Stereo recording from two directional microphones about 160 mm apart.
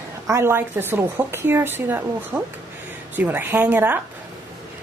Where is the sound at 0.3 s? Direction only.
15° right (ahead or behind).